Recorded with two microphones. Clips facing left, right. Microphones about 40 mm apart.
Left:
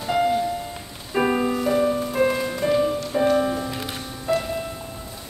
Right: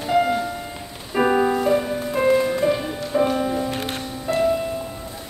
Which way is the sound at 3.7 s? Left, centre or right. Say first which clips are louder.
Right 4 dB; right.